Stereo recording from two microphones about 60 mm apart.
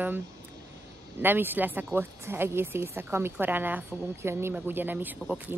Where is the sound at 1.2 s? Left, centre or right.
Right.